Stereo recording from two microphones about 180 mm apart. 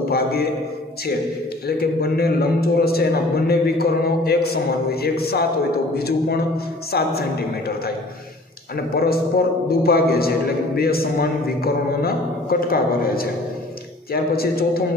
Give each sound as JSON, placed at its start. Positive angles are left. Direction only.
{"t": 0.1, "sound": "a man's voice", "side_deg": 60}
{"t": 1.8, "sound": "a man's voice", "side_deg": 60}
{"t": 8.9, "sound": "a man's voice", "side_deg": 60}